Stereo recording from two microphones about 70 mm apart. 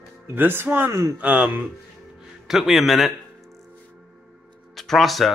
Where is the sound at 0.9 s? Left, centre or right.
Right.